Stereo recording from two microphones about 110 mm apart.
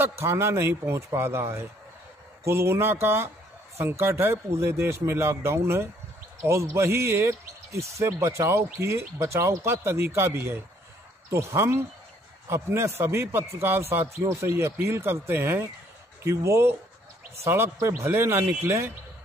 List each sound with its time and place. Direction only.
0.2 s speech: 25° right (ahead or behind)